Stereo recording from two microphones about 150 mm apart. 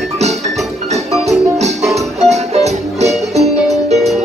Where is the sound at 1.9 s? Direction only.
45° right (ahead or behind).